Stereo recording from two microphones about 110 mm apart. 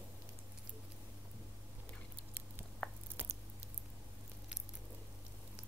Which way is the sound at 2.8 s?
15° left (ahead or behind).